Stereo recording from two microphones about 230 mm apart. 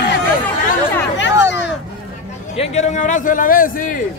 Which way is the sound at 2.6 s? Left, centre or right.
Left.